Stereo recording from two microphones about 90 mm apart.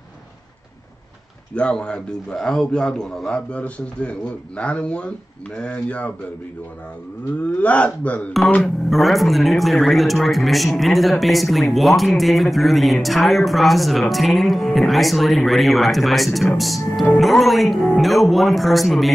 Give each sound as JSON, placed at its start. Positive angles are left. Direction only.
{"t": 1.5, "sound": "a man's voice", "side_deg": 10}
{"t": 7.5, "sound": "a man's voice", "side_deg": 15}
{"t": 8.6, "sound": "a man's voice", "side_deg": 0}